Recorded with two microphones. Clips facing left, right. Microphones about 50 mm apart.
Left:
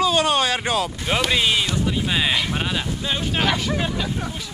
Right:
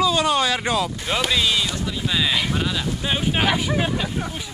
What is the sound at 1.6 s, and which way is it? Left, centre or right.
Speech, centre.